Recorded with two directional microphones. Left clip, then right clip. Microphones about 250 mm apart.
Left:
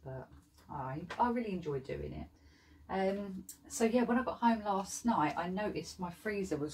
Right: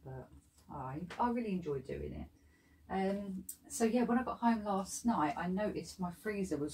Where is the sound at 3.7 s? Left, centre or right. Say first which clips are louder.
Left 2 dB; centre.